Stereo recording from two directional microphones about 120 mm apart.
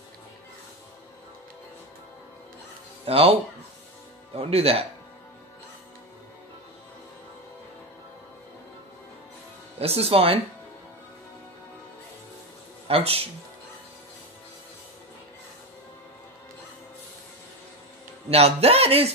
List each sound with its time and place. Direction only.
3.1 s speech: 55° right (ahead or behind)
4.4 s a man's voice: 55° right (ahead or behind)
9.8 s a man's voice: 55° right (ahead or behind)
12.8 s speech: 55° right (ahead or behind)
18.3 s a man's voice: 55° right (ahead or behind)